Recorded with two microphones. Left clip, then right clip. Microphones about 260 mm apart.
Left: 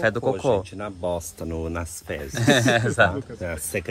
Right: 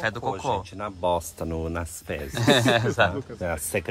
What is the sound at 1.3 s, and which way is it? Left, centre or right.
Speech, centre.